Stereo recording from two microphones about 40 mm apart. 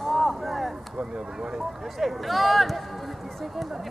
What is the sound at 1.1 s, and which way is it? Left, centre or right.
Speech, centre.